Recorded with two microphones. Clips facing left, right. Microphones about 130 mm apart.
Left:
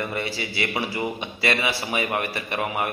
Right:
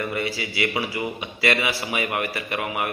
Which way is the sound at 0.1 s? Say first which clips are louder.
Right 1 dB; 30° left (ahead or behind).